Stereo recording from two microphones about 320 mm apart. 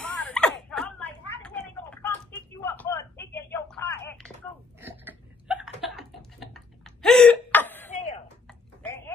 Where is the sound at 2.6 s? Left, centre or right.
Centre.